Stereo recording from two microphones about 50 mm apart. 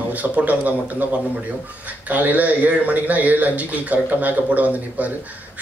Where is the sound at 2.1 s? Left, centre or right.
Right.